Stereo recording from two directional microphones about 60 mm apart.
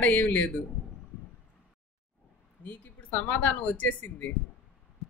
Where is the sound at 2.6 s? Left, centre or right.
Left.